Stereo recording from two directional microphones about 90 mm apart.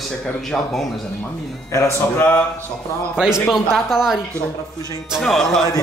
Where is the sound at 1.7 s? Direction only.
25° left (ahead or behind).